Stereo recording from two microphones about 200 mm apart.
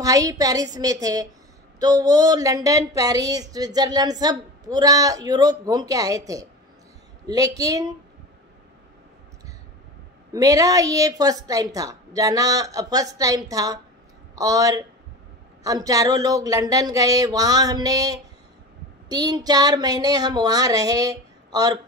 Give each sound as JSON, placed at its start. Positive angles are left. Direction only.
{"t": 0.0, "sound": "a woman's voice", "side_deg": -15}
{"t": 10.3, "sound": "a woman's voice", "side_deg": -15}